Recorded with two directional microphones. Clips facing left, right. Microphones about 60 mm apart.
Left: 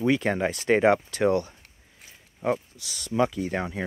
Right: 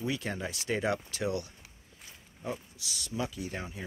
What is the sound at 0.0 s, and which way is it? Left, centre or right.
Speech, left.